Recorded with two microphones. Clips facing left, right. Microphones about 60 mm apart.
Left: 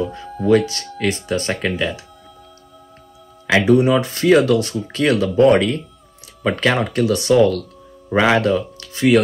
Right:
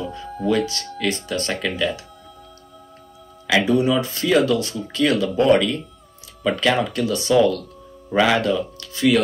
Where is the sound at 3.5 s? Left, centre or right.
Left.